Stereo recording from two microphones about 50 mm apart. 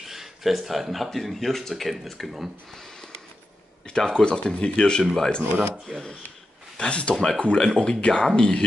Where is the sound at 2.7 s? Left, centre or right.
Centre.